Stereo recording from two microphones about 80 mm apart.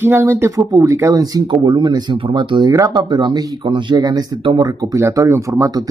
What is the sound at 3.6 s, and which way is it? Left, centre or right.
Speech, right.